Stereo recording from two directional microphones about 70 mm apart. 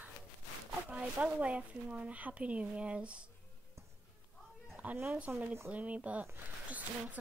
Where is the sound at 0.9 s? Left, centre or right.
Centre.